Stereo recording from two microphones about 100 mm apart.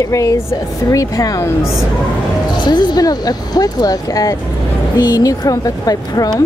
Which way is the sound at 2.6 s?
45° left (ahead or behind).